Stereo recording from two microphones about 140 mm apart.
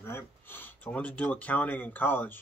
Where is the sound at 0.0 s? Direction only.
15° left (ahead or behind).